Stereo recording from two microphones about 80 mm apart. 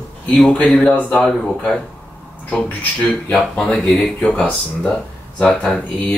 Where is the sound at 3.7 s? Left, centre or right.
Centre.